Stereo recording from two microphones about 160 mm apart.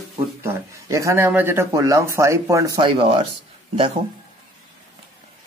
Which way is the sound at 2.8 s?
35° right (ahead or behind).